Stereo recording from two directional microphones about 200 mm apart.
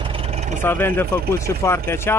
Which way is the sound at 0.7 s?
10° left (ahead or behind).